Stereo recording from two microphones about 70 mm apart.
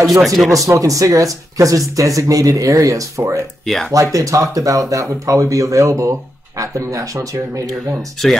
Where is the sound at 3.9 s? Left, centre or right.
Right.